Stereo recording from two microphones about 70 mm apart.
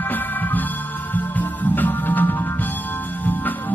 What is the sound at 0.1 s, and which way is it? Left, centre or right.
Music, left.